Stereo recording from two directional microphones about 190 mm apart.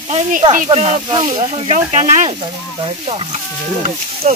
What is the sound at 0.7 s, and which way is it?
Speech, 30° right (ahead or behind).